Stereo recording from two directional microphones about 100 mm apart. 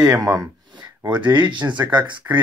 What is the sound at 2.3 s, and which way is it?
Speech, 30° right (ahead or behind).